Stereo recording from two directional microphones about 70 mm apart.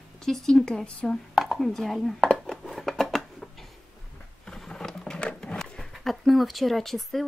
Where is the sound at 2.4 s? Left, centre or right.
Centre.